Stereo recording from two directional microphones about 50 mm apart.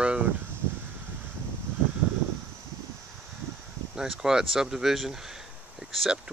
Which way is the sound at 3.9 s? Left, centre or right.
Centre.